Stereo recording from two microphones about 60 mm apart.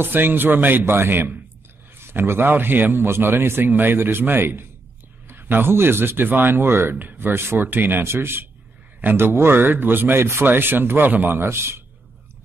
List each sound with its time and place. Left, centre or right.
0.0 s speech: right